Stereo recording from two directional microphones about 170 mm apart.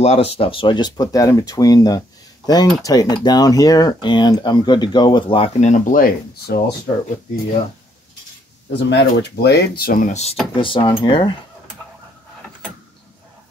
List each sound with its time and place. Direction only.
0.0 s speech: 35° left (ahead or behind)
5.7 s speech: 50° left (ahead or behind)
8.6 s speech: 85° left; by 10.3 s 45° left (ahead or behind)
10.5 s speech: 30° left (ahead or behind)